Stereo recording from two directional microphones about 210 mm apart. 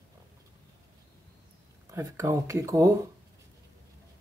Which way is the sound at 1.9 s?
15° right (ahead or behind).